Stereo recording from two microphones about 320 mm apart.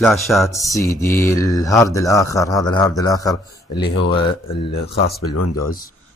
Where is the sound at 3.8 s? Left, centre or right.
Left.